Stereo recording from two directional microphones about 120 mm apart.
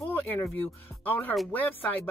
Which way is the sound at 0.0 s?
20° left (ahead or behind).